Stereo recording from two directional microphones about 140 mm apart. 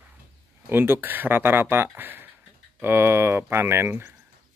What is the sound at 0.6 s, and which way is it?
Speech, 15° right (ahead or behind).